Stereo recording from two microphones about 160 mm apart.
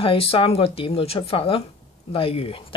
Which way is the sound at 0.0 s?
35° left (ahead or behind).